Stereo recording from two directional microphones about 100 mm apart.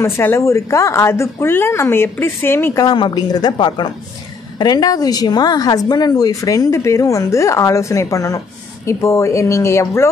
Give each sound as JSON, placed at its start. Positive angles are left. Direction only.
{"t": 0.0, "sound": "a woman's voice", "side_deg": 25}
{"t": 3.0, "sound": "a woman's voice", "side_deg": 45}